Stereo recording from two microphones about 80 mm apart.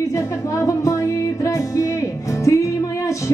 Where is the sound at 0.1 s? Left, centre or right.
Left.